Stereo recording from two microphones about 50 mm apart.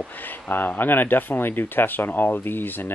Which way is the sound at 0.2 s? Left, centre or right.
Left.